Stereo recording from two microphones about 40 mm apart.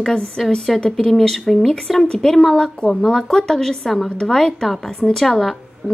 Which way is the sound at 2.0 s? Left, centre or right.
Centre.